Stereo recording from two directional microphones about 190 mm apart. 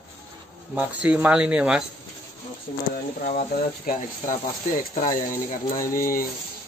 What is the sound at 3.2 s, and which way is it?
Speech, 55° left (ahead or behind).